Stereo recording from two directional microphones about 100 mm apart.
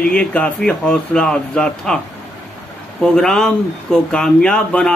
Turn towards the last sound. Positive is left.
turn(degrees=10)  # may be behind; listen again after turning